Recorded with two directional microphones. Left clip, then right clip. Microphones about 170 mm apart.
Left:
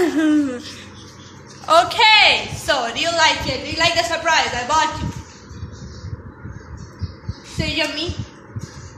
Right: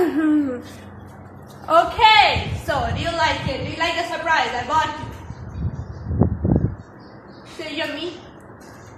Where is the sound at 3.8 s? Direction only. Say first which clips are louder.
Left 5 dB; 35° left (ahead or behind).